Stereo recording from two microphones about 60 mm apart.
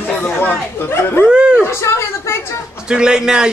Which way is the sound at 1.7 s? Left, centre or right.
Left.